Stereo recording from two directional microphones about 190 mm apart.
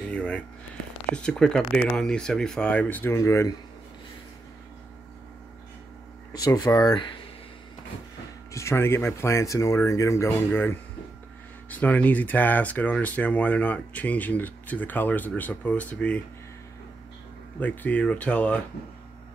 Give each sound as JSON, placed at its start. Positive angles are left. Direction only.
{"t": 0.1, "sound": "a sound", "side_deg": 5}
{"t": 1.1, "sound": "speech", "side_deg": 5}
{"t": 6.3, "sound": "speech", "side_deg": 20}
{"t": 8.5, "sound": "speech", "side_deg": 15}
{"t": 17.6, "sound": "speech", "side_deg": 10}